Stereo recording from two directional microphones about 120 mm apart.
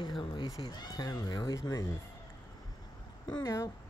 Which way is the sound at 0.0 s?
40° left (ahead or behind).